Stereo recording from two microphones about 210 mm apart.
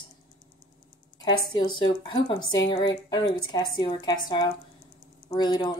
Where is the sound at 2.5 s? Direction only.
20° left (ahead or behind).